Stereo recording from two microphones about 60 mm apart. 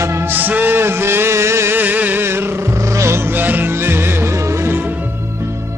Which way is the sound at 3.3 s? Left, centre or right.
Right.